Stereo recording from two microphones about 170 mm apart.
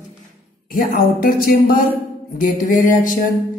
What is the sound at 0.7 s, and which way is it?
A woman's voice, 55° left (ahead or behind).